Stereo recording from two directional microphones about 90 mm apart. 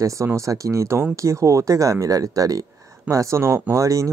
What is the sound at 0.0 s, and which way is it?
Speech, 35° right (ahead or behind).